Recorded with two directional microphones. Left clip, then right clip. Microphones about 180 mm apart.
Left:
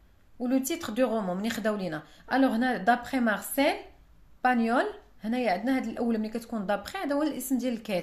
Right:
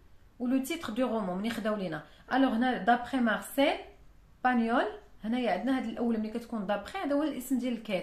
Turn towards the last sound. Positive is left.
turn(degrees=35)  # may be behind; listen again after turning